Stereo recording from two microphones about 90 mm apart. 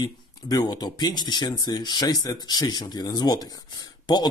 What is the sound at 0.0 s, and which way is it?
Speech, 50° left (ahead or behind).